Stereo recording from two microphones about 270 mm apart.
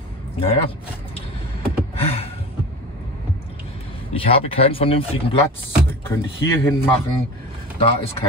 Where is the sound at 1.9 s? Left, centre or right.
Left.